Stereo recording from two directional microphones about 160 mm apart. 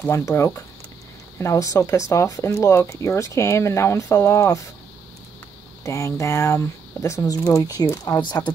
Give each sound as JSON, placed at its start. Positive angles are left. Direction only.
{"t": 0.0, "sound": "speech", "side_deg": 20}
{"t": 5.9, "sound": "speech", "side_deg": 20}